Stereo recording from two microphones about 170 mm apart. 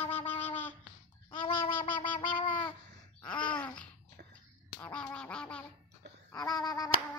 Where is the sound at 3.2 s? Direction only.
5° left (ahead or behind).